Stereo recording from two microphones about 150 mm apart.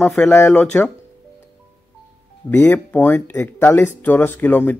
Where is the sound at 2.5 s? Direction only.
15° left (ahead or behind).